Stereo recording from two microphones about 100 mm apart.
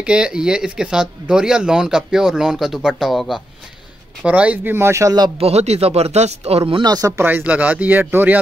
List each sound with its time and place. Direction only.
0.0 s speech: 10° right (ahead or behind)
4.2 s speech: 15° right (ahead or behind)
5.4 s speech: 90° right
6.8 s speech: 40° right (ahead or behind)
7.2 s speech: 20° right (ahead or behind)